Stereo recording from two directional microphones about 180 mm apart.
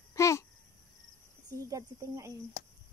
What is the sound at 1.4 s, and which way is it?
Speech, 20° right (ahead or behind).